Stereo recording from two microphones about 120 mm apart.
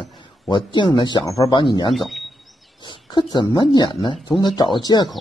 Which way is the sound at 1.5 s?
40° left (ahead or behind).